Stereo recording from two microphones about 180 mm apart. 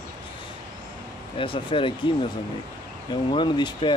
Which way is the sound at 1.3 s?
30° left (ahead or behind).